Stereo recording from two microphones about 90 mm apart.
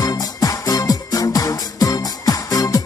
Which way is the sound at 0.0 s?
45° left (ahead or behind).